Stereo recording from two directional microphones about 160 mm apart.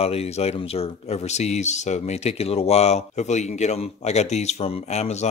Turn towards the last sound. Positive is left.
turn(degrees=45)  # may be behind; listen again after turning